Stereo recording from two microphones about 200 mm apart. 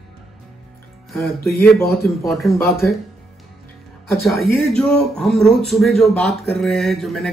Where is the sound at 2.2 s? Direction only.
Centre (ahead or behind).